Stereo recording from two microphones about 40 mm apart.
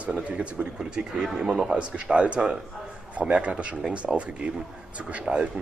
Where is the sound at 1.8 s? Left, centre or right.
Right.